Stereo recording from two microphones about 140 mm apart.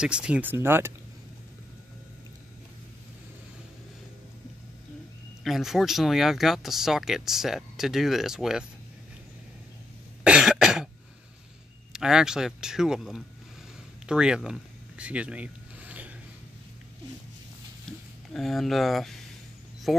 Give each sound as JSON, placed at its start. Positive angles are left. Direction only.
{"t": 0.0, "sound": "speech", "side_deg": -5}
{"t": 5.4, "sound": "speech", "side_deg": 0}
{"t": 10.2, "sound": "cough", "side_deg": -5}
{"t": 11.9, "sound": "speech", "side_deg": -5}
{"t": 14.0, "sound": "a sound", "side_deg": -5}
{"t": 18.3, "sound": "speech", "side_deg": 0}